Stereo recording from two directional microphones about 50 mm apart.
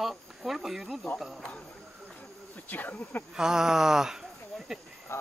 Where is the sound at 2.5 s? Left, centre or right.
Left.